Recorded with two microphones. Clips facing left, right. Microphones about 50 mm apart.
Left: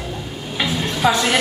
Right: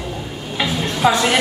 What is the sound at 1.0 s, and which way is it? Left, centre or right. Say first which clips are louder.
Speech: right 2 dB; centre.